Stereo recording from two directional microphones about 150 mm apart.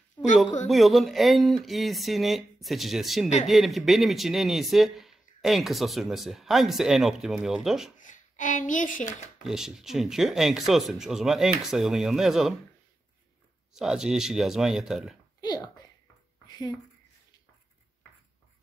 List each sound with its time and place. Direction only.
0.7 s a man's voice: centre (ahead or behind)
8.0 s speech: 60° left (ahead or behind)
9.4 s a man's voice: 5° right (ahead or behind)
13.7 s a man's voice: 5° right (ahead or behind)
15.4 s a sound: 25° left (ahead or behind)